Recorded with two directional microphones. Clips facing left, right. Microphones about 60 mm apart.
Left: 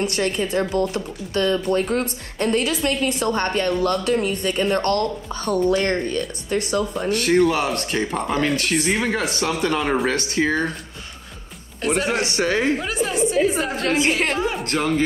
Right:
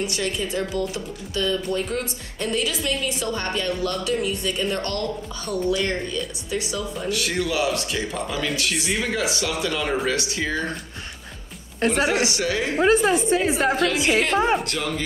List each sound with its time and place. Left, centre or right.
0.0 s speech: left
12.1 s speech: left
12.7 s a woman's voice: right
13.8 s speech: left
14.3 s a woman's voice: right
14.6 s speech: left